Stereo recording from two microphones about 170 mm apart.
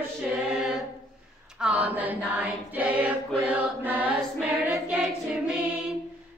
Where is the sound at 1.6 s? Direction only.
10° right (ahead or behind).